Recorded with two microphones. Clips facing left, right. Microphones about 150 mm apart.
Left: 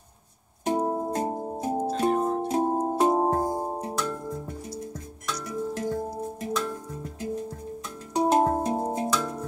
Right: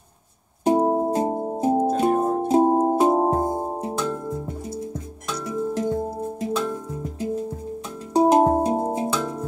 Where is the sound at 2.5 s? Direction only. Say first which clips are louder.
Right 7 dB; 30° right (ahead or behind).